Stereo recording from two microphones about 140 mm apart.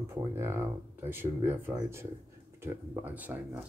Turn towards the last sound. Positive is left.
turn(degrees=-10)  # may be behind; listen again after turning